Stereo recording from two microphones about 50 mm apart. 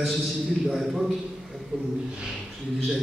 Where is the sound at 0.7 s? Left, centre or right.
Centre.